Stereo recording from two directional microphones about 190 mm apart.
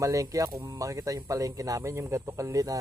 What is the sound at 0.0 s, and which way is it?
Speech, 15° right (ahead or behind).